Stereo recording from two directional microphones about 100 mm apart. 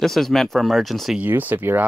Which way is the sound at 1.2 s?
20° right (ahead or behind).